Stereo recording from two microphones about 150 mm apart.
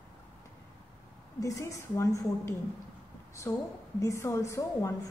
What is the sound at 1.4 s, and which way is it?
A woman's voice, 20° left (ahead or behind).